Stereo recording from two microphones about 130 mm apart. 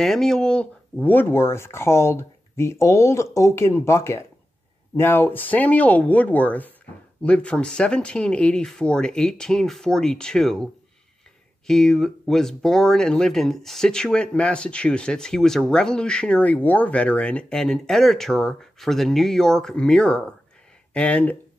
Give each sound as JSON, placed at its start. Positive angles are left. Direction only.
{"t": 0.0, "sound": "speech", "side_deg": 5}